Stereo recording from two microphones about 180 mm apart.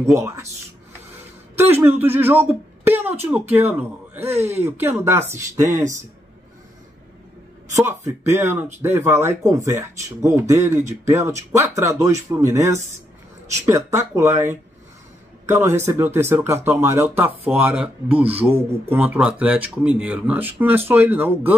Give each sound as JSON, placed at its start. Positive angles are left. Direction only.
{"t": 0.0, "sound": "speech", "side_deg": -15}
{"t": 1.8, "sound": "speech", "side_deg": -10}
{"t": 7.7, "sound": "a man's voice", "side_deg": -15}